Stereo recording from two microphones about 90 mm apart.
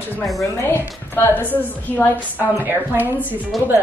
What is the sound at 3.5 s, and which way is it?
Speech, centre (ahead or behind).